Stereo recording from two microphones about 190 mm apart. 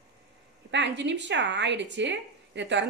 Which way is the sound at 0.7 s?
70° right (ahead or behind).